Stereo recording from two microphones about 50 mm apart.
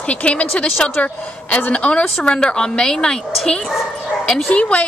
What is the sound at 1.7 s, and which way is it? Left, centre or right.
Speech, left.